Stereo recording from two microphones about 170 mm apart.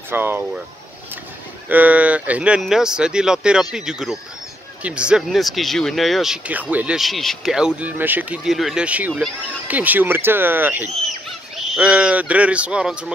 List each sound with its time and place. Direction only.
0.1 s speech: 10° right (ahead or behind)
1.7 s speech: 10° right (ahead or behind)